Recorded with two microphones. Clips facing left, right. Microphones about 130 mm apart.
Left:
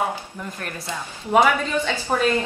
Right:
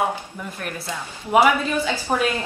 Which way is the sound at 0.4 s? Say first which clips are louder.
Right 1 dB; 5° right (ahead or behind).